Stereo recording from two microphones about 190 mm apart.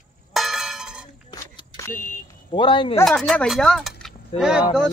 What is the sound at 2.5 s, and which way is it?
Speech, 25° left (ahead or behind).